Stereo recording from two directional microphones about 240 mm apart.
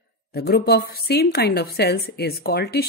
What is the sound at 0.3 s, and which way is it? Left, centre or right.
A woman's voice, left.